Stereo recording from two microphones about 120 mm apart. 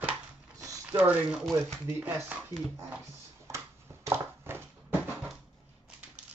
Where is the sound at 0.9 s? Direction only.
15° right (ahead or behind).